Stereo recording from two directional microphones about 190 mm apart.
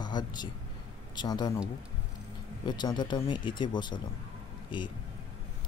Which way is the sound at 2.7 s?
25° left (ahead or behind).